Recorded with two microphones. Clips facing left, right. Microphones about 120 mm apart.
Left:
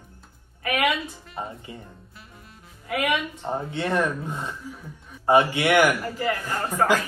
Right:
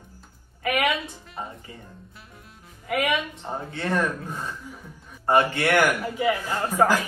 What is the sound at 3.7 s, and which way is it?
Speech, 25° left (ahead or behind).